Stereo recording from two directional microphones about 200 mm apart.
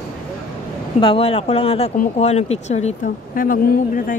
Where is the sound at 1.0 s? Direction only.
30° left (ahead or behind).